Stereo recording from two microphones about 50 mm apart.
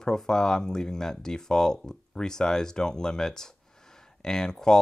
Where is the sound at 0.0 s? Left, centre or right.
Centre.